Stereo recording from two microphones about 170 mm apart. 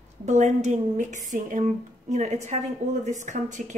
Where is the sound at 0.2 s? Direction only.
45° right (ahead or behind).